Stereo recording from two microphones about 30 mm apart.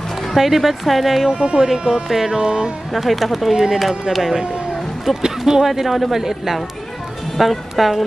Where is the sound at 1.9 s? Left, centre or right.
Centre.